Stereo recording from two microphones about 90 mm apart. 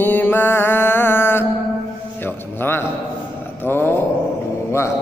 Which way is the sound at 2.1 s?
25° left (ahead or behind).